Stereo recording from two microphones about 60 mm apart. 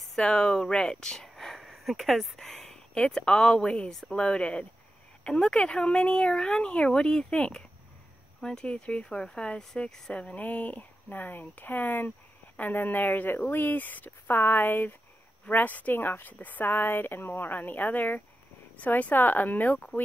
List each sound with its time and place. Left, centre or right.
0.0 s speech: centre
10.3 s a woman's voice: left